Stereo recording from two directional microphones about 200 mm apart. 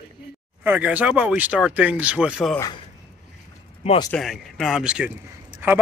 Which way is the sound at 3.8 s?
30° left (ahead or behind).